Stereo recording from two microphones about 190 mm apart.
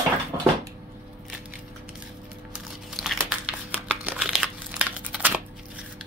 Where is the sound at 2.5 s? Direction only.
Centre (ahead or behind).